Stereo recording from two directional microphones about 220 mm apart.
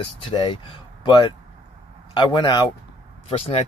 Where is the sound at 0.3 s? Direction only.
20° left (ahead or behind).